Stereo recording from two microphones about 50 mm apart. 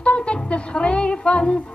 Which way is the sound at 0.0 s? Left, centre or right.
Left.